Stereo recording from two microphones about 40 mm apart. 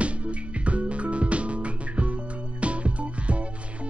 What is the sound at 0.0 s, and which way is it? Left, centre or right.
Music, right.